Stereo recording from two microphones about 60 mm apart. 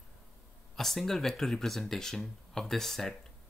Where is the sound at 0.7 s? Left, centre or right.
Centre.